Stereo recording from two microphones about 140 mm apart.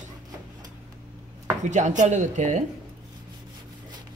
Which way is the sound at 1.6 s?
60° right (ahead or behind).